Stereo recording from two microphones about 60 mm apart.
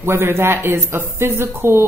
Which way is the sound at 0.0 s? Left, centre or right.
Right.